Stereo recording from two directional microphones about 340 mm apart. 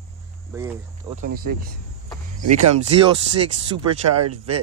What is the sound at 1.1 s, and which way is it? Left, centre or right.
Speech, right.